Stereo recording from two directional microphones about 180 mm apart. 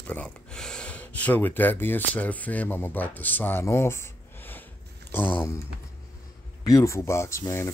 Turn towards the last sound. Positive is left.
turn(degrees=15)  # may be behind; listen again after turning